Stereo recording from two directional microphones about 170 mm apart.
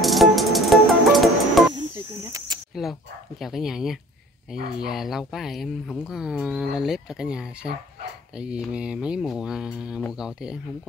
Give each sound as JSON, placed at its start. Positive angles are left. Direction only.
{"t": 0.0, "sound": "music", "side_deg": 0}
{"t": 1.7, "sound": "cricket", "side_deg": -20}
{"t": 2.7, "sound": "speech", "side_deg": 0}